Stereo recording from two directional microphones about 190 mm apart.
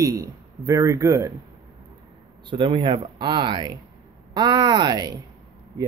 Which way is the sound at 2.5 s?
25° right (ahead or behind).